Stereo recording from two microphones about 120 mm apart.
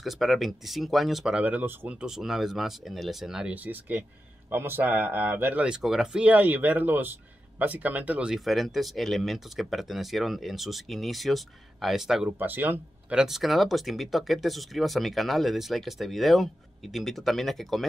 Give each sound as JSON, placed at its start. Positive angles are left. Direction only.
{"t": 0.0, "sound": "speech", "side_deg": 0}
{"t": 12.3, "sound": "speech", "side_deg": -15}
{"t": 13.2, "sound": "speech", "side_deg": 0}